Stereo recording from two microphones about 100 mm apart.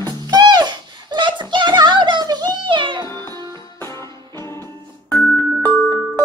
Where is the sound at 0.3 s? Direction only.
45° right (ahead or behind).